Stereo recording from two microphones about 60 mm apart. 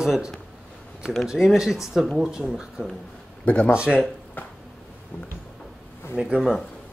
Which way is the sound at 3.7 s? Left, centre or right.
Centre.